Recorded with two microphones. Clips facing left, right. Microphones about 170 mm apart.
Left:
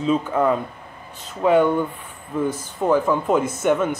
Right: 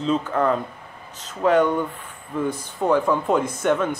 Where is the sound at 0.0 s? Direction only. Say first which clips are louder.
Left 2 dB; 10° left (ahead or behind).